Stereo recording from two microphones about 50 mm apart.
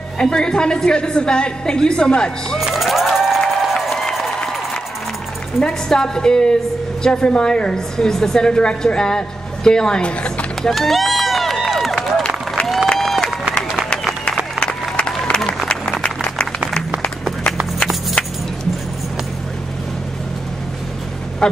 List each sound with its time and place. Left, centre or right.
0.2 s a woman's voice: centre
2.6 s music: centre
3.4 s crowd: centre
5.6 s a woman's voice: centre
10.7 s run: centre
12.6 s applause: centre
14.6 s applause: left
21.4 s music: centre